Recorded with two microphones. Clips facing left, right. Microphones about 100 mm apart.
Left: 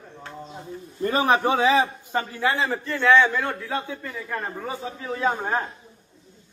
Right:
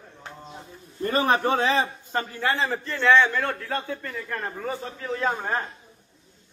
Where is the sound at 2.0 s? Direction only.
15° left (ahead or behind).